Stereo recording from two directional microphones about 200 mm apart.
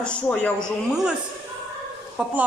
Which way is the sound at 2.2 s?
5° right (ahead or behind).